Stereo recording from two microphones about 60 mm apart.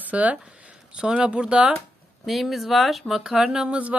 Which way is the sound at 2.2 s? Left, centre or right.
Centre.